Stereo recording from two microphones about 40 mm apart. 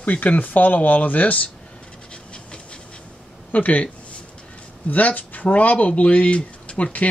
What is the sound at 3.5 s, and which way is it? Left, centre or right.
Speech, left.